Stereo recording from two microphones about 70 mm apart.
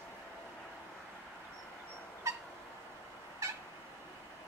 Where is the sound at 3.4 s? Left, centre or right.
Right.